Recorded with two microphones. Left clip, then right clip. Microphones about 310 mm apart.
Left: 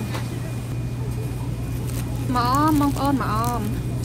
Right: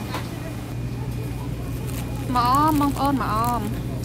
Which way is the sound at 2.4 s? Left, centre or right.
Centre.